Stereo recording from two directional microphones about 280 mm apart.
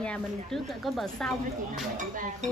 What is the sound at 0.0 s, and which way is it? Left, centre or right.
A woman's voice, centre.